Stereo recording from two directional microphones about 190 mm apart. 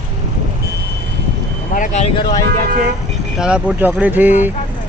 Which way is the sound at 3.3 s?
5° right (ahead or behind).